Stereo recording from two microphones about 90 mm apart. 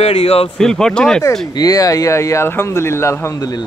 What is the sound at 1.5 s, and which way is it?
Speech, 45° left (ahead or behind).